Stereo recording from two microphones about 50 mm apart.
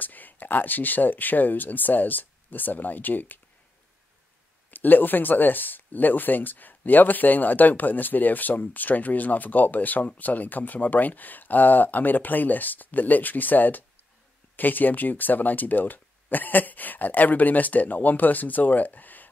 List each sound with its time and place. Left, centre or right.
0.0 s speech: left
4.6 s speech: left